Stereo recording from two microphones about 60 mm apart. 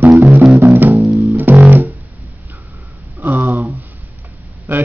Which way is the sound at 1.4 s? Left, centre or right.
Right.